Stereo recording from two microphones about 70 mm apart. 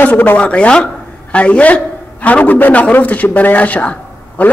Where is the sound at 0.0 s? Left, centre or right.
Left.